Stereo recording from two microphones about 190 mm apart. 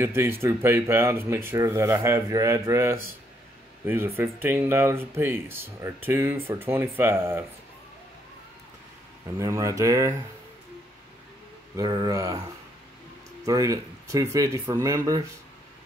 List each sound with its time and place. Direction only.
0.0 s speech: 15° right (ahead or behind)
9.4 s speech: 15° right (ahead or behind)
11.7 s speech: 20° right (ahead or behind)
13.5 s speech: 20° right (ahead or behind)